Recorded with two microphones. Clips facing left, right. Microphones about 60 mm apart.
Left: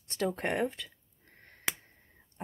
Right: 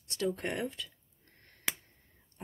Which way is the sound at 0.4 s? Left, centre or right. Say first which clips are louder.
Left 4 dB; left.